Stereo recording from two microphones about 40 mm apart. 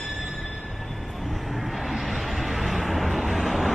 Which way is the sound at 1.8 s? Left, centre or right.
Centre.